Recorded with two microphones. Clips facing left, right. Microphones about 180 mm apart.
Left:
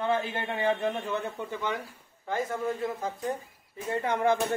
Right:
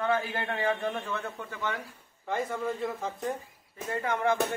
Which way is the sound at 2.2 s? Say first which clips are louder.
Left 1 dB; 5° left (ahead or behind).